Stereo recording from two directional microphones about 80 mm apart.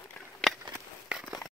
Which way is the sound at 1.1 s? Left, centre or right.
Centre.